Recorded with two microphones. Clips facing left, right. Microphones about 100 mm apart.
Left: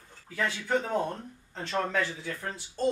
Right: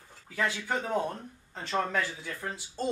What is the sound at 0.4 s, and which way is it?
Speech, 5° right (ahead or behind).